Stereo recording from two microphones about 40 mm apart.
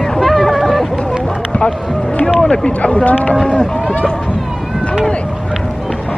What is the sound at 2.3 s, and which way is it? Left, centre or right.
Speech, left.